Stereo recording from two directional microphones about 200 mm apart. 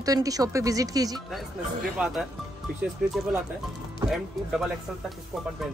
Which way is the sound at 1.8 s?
Centre (ahead or behind).